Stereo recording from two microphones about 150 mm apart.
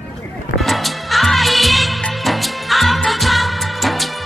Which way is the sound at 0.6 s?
Centre (ahead or behind).